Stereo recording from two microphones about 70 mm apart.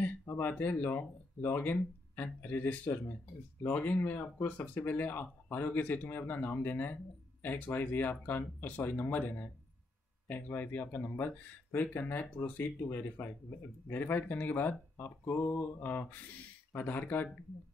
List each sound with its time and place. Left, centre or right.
0.3 s speech: left